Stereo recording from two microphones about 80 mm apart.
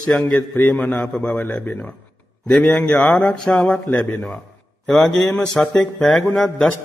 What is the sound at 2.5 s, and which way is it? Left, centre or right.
Speech, centre.